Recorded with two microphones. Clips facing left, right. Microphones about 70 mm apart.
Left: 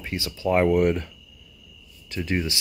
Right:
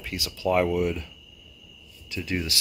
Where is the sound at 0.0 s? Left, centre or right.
Left.